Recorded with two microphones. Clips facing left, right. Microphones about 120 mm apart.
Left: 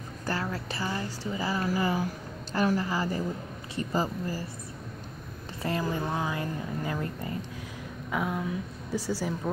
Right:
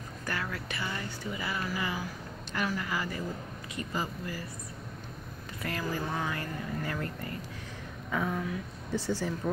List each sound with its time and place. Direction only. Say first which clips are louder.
0.3 s a sound: left 4 dB; 30° left (ahead or behind)
1.3 s speech: left 6 dB; 35° left (ahead or behind)
5.6 s a woman's voice: left 4 dB; 25° left (ahead or behind)